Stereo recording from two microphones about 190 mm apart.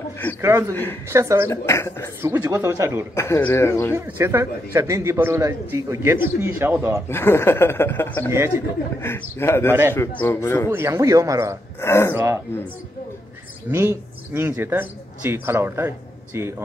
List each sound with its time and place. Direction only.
0.4 s a man's voice: 15° right (ahead or behind)
1.5 s speech: 15° left (ahead or behind)
2.2 s a man's voice: 15° right (ahead or behind)
3.2 s speech: 10° left (ahead or behind)
3.9 s a man's voice: 15° right (ahead or behind)
7.1 s speech: 10° left (ahead or behind)
8.3 s a man's voice: 15° right (ahead or behind)
9.0 s speech: 10° left (ahead or behind)
10.7 s a man's voice: 15° right (ahead or behind)
11.8 s speech: 15° left (ahead or behind)
12.1 s a man's voice: 10° right (ahead or behind)
13.7 s a man's voice: 10° right (ahead or behind)